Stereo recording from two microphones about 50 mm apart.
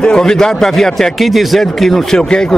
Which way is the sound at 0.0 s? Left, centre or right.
Centre.